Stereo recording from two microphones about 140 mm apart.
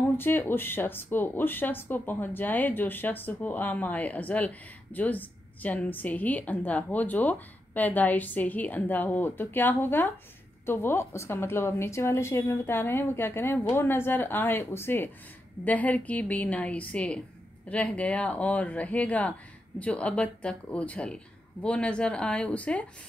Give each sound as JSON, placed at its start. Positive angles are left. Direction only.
{"t": 0.2, "sound": "speech", "side_deg": 15}